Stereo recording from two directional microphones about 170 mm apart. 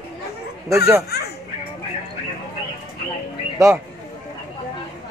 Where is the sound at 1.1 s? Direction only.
70° left (ahead or behind).